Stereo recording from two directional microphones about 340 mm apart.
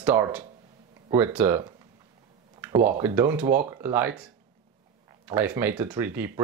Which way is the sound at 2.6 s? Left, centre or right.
Centre.